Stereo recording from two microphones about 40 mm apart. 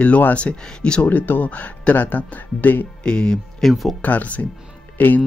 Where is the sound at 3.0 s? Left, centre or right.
Left.